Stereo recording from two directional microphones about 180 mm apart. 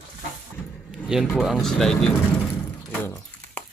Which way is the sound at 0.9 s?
5° right (ahead or behind).